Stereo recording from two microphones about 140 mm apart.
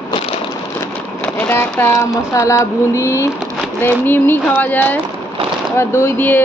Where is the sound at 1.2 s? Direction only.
10° left (ahead or behind).